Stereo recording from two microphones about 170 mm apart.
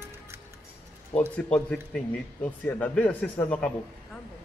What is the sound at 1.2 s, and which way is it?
A man's voice, 10° left (ahead or behind).